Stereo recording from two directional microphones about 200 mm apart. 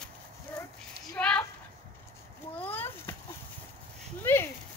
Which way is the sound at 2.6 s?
10° left (ahead or behind).